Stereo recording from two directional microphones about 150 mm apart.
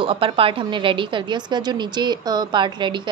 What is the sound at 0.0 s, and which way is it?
Speech, 40° right (ahead or behind).